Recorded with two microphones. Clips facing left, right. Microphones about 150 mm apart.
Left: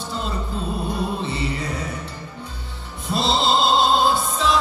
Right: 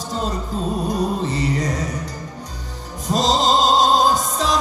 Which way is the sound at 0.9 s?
40° right (ahead or behind).